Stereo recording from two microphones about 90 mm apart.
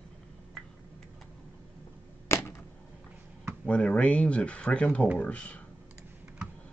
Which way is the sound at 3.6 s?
15° left (ahead or behind).